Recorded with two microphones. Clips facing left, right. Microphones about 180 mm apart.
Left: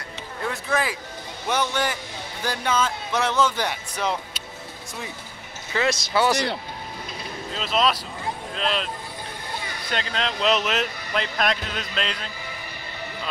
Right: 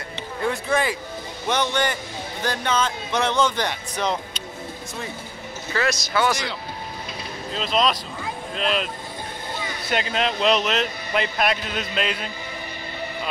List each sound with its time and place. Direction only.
0.1 s a sound: centre (ahead or behind)
1.5 s speech: 5° left (ahead or behind)
5.9 s speech: 30° left (ahead or behind)
6.3 s speech: 60° left (ahead or behind)
7.5 s speech: 5° left (ahead or behind)